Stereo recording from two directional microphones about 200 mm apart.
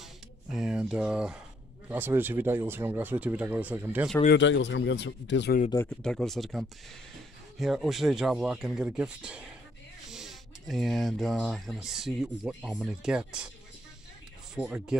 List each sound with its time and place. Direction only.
0.5 s speech: centre (ahead or behind)
4.3 s speech: 65° left (ahead or behind)
6.0 s speech: centre (ahead or behind)
14.5 s speech: 5° right (ahead or behind)